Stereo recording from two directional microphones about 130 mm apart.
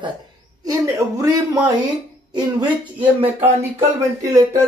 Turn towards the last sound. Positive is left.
turn(degrees=-15)  # may be behind; listen again after turning